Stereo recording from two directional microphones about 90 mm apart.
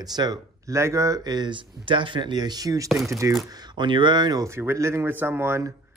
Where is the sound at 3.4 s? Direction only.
50° right (ahead or behind).